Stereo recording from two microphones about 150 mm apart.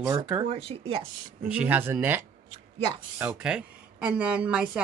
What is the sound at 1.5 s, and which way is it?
Speech, 10° right (ahead or behind).